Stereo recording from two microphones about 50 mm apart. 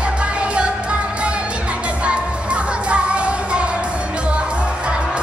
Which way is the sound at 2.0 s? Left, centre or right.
Right.